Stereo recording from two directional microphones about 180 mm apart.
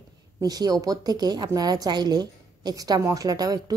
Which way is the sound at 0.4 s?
20° right (ahead or behind).